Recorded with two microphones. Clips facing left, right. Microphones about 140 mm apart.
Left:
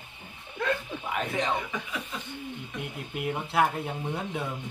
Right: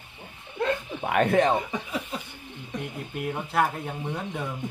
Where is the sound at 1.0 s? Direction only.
60° right (ahead or behind).